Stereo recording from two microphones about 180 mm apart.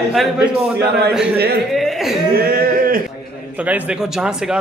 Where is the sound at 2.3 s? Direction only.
55° right (ahead or behind).